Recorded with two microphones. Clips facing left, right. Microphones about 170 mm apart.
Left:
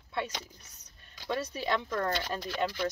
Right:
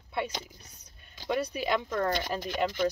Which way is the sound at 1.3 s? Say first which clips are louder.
Right 3 dB; 15° right (ahead or behind).